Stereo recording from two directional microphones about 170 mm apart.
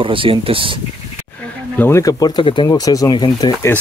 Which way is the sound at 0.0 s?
30° right (ahead or behind).